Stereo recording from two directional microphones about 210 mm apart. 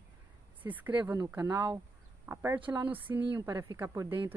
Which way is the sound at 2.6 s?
25° right (ahead or behind).